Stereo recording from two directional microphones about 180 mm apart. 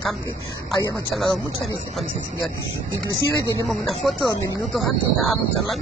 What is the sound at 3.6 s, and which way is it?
Speech, centre (ahead or behind).